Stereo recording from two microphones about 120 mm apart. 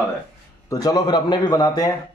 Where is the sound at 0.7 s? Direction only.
35° left (ahead or behind).